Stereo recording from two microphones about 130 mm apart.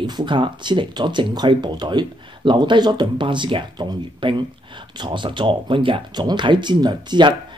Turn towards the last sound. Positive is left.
turn(degrees=-35)  # may be behind; listen again after turning